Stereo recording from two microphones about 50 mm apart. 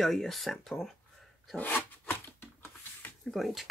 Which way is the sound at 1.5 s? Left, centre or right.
Left.